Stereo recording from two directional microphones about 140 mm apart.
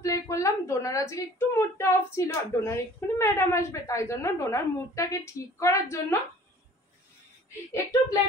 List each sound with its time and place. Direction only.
0.0 s a woman's voice: 20° left (ahead or behind)